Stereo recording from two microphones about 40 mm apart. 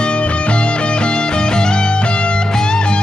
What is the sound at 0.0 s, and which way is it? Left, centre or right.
Music, left.